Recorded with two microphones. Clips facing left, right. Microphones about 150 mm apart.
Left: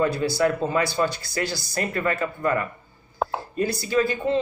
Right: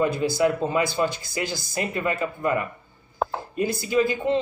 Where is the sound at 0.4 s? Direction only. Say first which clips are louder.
Even; 15° right (ahead or behind).